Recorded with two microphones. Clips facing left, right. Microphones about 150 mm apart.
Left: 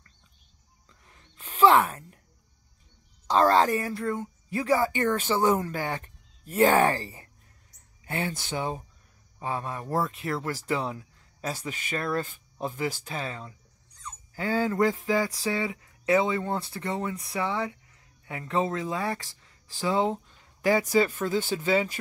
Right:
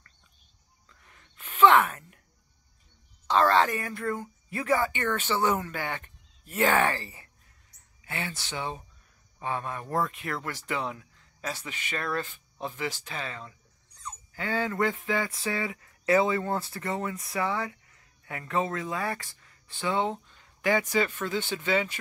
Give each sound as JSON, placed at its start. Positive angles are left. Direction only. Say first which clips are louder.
{"t": 0.8, "sound": "a sound", "louder": "left 1 dB", "side_deg": 30}
{"t": 3.3, "sound": "speech", "louder": "left 2 dB", "side_deg": 40}
{"t": 4.0, "sound": "speech", "louder": "left 2 dB", "side_deg": 20}
{"t": 5.1, "sound": "speech", "louder": "left 1 dB", "side_deg": 40}
{"t": 9.4, "sound": "speech", "louder": "left 1 dB", "side_deg": 25}